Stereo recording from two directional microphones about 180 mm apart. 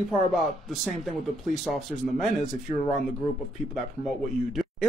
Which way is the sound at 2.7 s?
30° right (ahead or behind).